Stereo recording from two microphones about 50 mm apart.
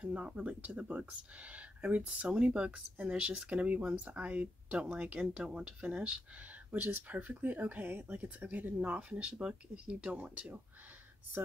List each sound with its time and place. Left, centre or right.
0.0 s speech: right
5.4 s speech: centre
10.1 s speech: right